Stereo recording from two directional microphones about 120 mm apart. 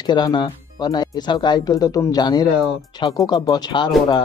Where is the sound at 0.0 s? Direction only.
35° left (ahead or behind).